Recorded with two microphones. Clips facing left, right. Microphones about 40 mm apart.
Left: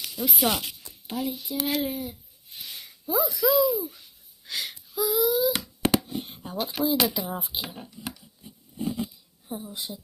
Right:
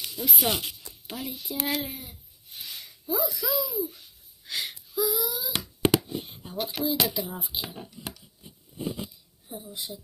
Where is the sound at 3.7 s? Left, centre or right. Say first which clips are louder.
Left 2 dB; left.